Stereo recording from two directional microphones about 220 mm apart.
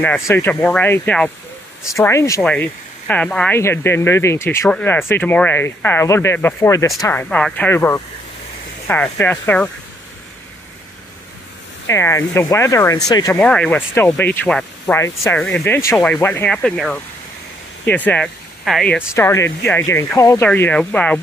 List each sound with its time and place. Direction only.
0.3 s speech: 10° left (ahead or behind)
11.9 s speech: 10° left (ahead or behind)
13.4 s speech: 5° left (ahead or behind)